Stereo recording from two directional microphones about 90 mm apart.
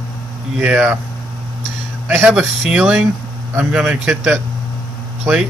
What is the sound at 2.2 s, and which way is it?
A man's voice, 15° right (ahead or behind).